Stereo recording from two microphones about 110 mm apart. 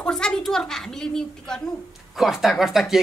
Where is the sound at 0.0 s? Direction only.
5° left (ahead or behind).